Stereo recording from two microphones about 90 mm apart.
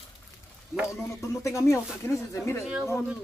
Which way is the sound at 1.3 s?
30° left (ahead or behind).